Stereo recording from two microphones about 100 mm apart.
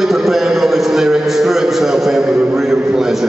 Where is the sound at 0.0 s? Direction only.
5° right (ahead or behind).